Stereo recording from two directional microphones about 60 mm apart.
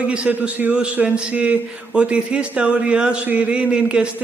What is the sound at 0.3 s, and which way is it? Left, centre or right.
A man's voice, right.